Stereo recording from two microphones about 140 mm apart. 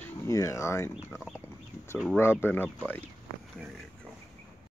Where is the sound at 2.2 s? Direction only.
15° left (ahead or behind).